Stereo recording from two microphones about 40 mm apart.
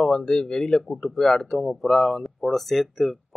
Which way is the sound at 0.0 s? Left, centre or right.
Centre.